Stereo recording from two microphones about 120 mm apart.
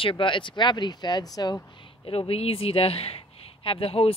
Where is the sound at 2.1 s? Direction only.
50° left (ahead or behind).